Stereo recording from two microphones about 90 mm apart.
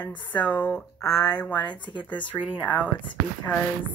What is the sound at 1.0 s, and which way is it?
Speech, 40° left (ahead or behind).